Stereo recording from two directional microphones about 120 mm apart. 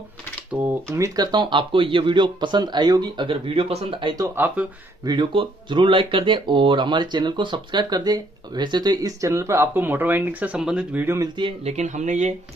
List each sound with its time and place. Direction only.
0.5 s speech: 15° right (ahead or behind); by 4.1 s 55° right (ahead or behind)
4.4 s speech: 15° right (ahead or behind)
5.0 s speech: 40° right (ahead or behind); by 11.1 s 10° right (ahead or behind)
11.6 s speech: 70° right (ahead or behind)